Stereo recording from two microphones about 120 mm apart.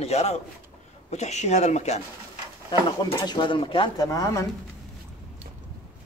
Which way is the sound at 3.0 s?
40° left (ahead or behind).